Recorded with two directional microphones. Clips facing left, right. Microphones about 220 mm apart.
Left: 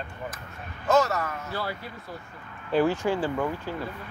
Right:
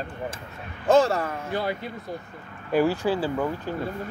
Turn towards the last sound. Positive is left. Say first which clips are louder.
# right 1 dB
turn(degrees=-10)  # may be behind; listen again after turning